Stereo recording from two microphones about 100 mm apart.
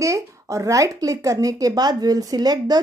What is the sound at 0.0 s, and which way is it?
A woman's voice, 30° right (ahead or behind).